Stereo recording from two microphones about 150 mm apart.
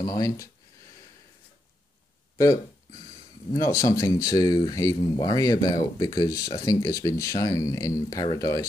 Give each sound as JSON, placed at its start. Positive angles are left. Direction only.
{"t": 0.0, "sound": "speech", "side_deg": 25}
{"t": 2.3, "sound": "speech", "side_deg": 20}